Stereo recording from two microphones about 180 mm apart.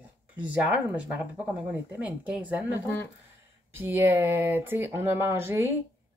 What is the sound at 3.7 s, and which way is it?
A woman's voice, 10° right (ahead or behind).